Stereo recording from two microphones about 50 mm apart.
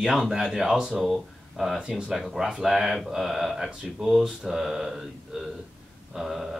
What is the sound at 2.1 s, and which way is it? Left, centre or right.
A man's voice, centre.